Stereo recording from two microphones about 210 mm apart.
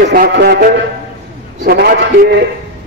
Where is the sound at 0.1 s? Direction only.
45° right (ahead or behind).